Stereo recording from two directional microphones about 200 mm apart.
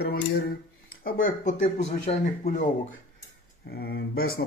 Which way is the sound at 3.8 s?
50° left (ahead or behind).